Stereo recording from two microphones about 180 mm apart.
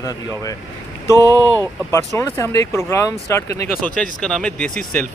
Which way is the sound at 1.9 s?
15° left (ahead or behind).